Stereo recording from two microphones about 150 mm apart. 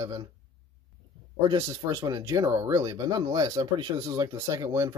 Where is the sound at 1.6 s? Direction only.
20° right (ahead or behind).